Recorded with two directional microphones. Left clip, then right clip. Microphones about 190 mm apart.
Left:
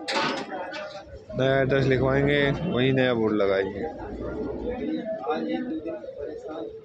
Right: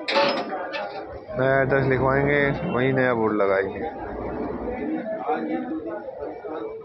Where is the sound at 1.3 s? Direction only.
30° left (ahead or behind).